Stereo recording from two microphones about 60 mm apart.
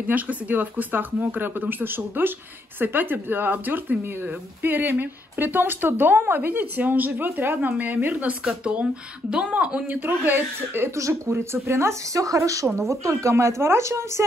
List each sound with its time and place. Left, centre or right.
0.1 s speech: right
9.3 s a woman's voice: centre
9.8 s speech: right
11.0 s speech: right